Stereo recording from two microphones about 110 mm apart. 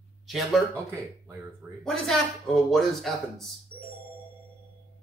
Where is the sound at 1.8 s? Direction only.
5° left (ahead or behind).